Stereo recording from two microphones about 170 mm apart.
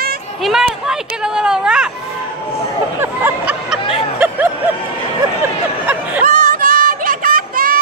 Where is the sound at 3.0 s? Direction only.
10° right (ahead or behind).